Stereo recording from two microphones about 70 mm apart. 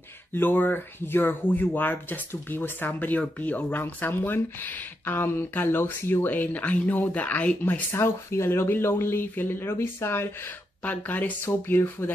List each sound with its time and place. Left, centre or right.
0.3 s speech: left
7.9 s speech: left
10.8 s speech: left